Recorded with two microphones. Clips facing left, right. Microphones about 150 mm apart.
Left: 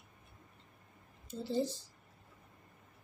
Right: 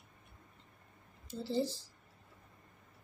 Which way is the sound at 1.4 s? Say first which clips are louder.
Even; 20° left (ahead or behind).